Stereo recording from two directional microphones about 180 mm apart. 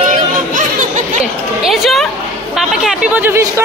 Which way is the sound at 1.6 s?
Centre (ahead or behind).